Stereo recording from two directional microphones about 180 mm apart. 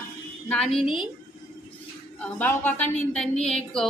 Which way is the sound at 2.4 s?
10° left (ahead or behind).